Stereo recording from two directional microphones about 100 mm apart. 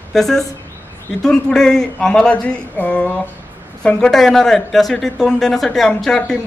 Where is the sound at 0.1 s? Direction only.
5° left (ahead or behind).